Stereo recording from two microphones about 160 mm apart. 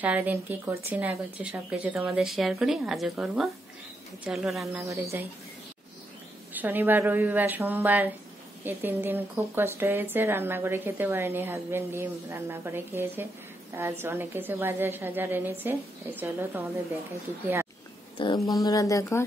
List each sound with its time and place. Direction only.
0.0 s a woman's voice: 10° right (ahead or behind)
4.8 s speech: 20° right (ahead or behind)
6.5 s a woman's voice: 10° right (ahead or behind)
18.2 s speech: 30° left (ahead or behind)